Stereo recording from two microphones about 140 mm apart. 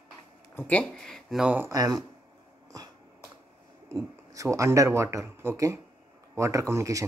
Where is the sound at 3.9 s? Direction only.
25° right (ahead or behind).